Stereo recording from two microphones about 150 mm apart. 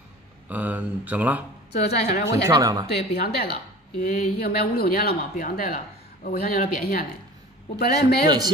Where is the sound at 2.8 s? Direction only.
90° left.